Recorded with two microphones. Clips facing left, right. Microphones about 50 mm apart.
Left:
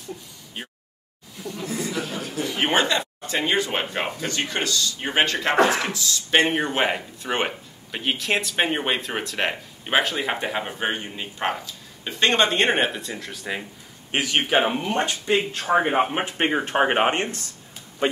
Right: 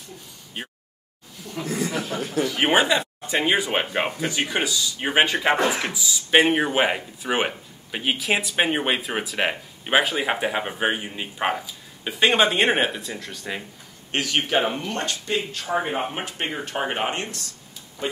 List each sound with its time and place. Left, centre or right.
1.9 s chuckle: right
2.6 s speech: centre
14.1 s speech: centre